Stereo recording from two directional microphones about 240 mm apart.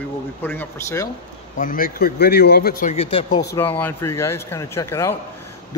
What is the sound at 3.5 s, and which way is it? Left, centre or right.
A man's voice, centre.